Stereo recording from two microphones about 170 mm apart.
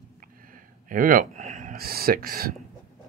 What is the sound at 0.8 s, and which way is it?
Speech, 55° right (ahead or behind).